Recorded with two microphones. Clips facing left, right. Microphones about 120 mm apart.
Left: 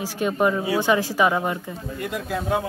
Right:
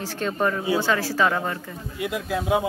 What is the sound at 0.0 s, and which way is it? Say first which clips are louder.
A woman's voice: left 3 dB; 10° left (ahead or behind).